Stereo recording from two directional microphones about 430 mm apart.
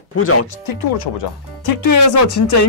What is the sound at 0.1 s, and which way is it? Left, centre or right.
Speech, left.